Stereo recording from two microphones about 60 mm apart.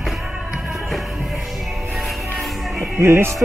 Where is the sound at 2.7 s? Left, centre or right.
Right.